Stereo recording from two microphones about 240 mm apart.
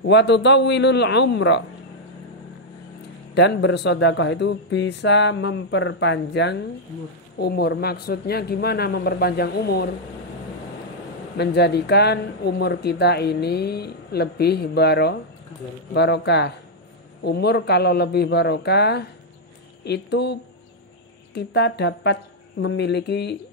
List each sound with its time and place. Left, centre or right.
0.0 s speech: left
3.3 s speech: left
11.3 s speech: left